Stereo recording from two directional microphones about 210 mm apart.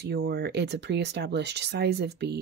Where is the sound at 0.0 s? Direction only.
50° right (ahead or behind).